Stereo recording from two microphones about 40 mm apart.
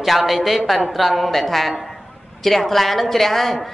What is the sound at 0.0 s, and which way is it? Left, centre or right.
A man's voice, centre.